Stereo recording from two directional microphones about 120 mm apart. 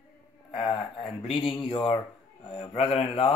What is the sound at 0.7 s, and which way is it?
Speech, 50° left (ahead or behind).